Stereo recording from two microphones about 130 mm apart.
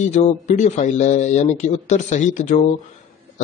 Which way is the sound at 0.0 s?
60° left (ahead or behind).